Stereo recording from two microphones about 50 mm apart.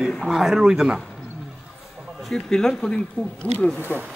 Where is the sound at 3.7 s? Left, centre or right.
Right.